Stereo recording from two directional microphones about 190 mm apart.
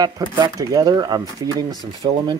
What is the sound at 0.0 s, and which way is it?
Speech, 20° right (ahead or behind).